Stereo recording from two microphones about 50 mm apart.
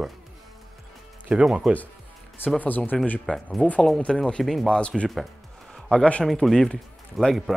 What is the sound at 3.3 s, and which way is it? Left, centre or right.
Speech, left.